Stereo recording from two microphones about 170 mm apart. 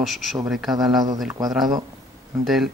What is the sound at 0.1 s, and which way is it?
Speech, centre (ahead or behind).